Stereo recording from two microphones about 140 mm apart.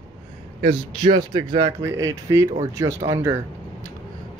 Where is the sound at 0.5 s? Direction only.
40° right (ahead or behind).